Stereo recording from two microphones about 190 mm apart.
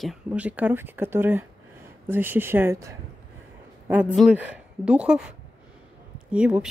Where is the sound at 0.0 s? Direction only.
5° right (ahead or behind).